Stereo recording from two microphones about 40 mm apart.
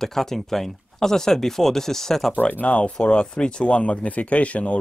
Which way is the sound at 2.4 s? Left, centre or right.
Left.